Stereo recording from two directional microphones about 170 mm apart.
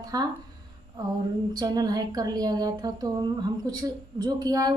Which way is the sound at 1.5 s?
20° right (ahead or behind).